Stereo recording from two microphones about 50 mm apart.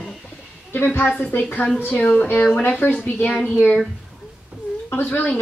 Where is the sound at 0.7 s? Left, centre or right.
Left.